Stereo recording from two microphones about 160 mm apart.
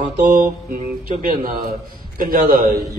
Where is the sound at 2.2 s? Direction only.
60° right (ahead or behind).